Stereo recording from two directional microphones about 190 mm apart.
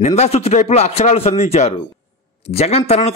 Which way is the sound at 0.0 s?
35° left (ahead or behind).